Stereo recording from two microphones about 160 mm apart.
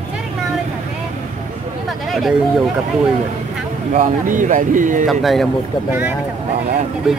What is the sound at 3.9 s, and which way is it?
Speech, 55° right (ahead or behind).